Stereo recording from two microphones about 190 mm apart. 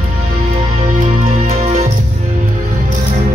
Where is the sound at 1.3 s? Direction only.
35° right (ahead or behind).